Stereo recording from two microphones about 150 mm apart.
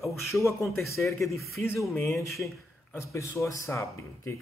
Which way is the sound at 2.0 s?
15° left (ahead or behind).